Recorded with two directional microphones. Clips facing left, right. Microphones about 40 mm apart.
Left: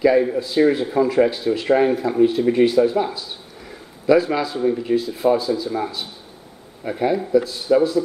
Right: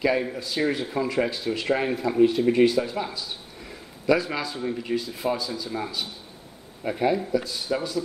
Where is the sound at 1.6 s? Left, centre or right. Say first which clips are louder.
Left 7 dB; centre.